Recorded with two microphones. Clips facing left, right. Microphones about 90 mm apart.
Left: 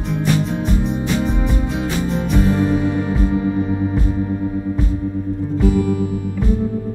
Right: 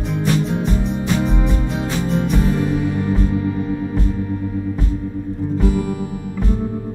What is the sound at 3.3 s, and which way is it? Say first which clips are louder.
Music: left 2 dB; 25° left (ahead or behind).